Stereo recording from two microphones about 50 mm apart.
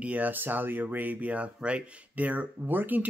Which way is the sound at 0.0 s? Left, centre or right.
Right.